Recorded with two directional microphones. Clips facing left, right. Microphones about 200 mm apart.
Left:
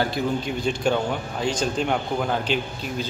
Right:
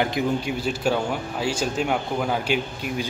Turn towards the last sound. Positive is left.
turn(degrees=-10)  # may be behind; listen again after turning